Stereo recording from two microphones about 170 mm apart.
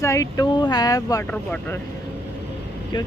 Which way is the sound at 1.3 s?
10° left (ahead or behind).